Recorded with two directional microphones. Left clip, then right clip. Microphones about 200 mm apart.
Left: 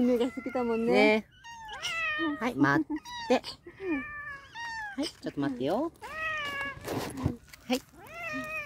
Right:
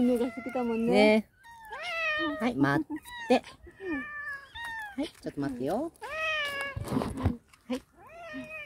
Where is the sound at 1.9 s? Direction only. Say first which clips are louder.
Right 2 dB; 55° right (ahead or behind).